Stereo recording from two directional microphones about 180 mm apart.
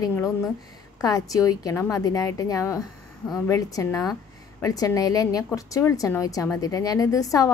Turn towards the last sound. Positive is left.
turn(degrees=20)  # may be behind; listen again after turning